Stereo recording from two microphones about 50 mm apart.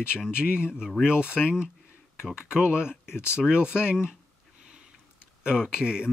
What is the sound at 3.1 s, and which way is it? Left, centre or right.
Speech, left.